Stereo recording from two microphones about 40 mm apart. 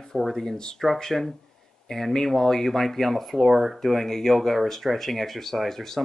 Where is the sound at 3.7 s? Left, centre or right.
Centre.